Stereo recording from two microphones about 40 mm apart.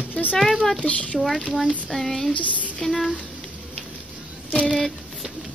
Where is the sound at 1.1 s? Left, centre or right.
Centre.